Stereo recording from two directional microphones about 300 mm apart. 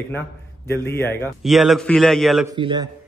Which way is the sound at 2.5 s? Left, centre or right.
Centre.